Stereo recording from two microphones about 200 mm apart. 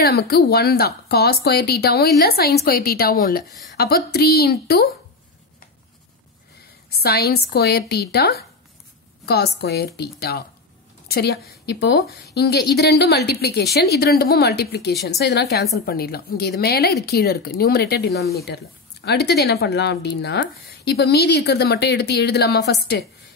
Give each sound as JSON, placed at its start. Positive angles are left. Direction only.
{"t": 0.0, "sound": "a woman's voice", "side_deg": 50}
{"t": 6.9, "sound": "a woman's voice", "side_deg": 55}